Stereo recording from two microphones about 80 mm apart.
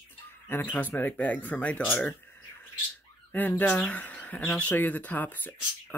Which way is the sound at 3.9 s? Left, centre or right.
Centre.